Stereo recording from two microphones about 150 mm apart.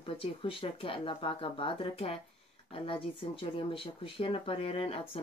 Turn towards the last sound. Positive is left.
turn(degrees=40)  # may be behind; listen again after turning